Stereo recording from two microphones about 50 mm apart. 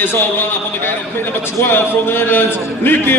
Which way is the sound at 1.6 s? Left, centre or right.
Left.